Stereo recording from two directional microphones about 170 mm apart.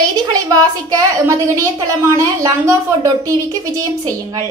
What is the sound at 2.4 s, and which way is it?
Speech, 20° right (ahead or behind).